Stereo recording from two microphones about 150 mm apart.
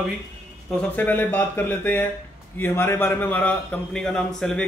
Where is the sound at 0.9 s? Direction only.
10° left (ahead or behind).